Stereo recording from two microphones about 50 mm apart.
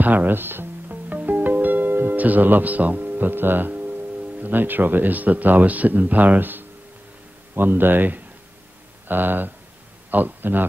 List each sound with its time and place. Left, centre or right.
0.0 s music: right
1.0 s speech: right